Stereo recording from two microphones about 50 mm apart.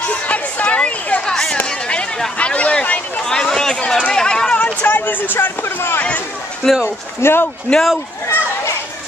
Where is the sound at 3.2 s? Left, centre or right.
Centre.